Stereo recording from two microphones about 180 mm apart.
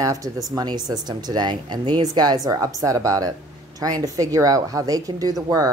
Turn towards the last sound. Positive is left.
turn(degrees=-20)  # may be behind; listen again after turning